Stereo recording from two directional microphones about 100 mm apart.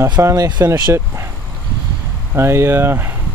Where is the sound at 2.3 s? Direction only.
25° right (ahead or behind).